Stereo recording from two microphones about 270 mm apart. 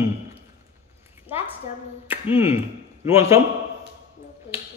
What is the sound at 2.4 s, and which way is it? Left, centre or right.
Speech, centre.